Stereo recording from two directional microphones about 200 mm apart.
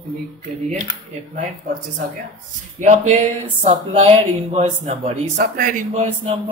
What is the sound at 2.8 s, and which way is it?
Speech, 35° right (ahead or behind).